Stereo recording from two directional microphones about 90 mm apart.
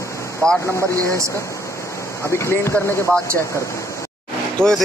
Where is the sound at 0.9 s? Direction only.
35° right (ahead or behind).